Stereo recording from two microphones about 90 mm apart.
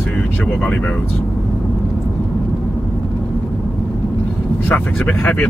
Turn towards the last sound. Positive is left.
turn(degrees=20)  # may be behind; listen again after turning